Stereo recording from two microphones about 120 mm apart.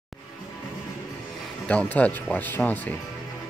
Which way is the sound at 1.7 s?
10° left (ahead or behind).